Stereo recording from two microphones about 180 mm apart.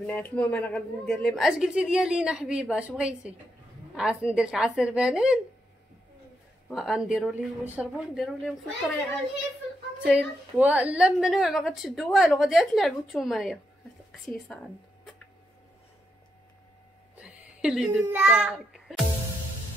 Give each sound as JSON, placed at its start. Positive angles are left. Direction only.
{"t": 0.0, "sound": "a woman's voice", "side_deg": 10}
{"t": 6.7, "sound": "a woman's voice", "side_deg": 0}
{"t": 10.0, "sound": "a woman's voice", "side_deg": -10}
{"t": 17.1, "sound": "a sound", "side_deg": -5}
{"t": 18.4, "sound": "a child's voice", "side_deg": 0}